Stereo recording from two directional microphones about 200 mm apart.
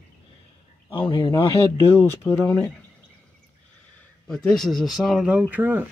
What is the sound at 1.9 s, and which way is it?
Speech, 10° left (ahead or behind).